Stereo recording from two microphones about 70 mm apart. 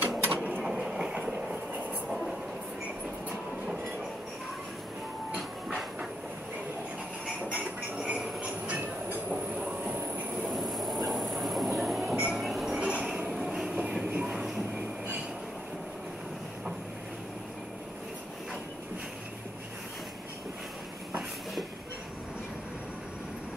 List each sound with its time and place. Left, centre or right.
0.2 s a sound: right
0.7 s train: centre
7.4 s train: centre
8.7 s train: right
9.3 s train: centre
10.5 s a sound: centre
11.1 s train: centre